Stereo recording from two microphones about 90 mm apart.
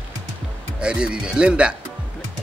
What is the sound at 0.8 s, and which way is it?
Speech, 10° right (ahead or behind).